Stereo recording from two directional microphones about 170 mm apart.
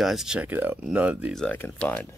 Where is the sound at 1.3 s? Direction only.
5° left (ahead or behind).